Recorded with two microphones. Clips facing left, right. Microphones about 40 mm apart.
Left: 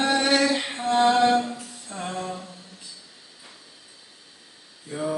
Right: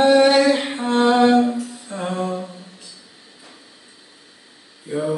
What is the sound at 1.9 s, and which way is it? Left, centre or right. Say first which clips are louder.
Music: right 6 dB; centre.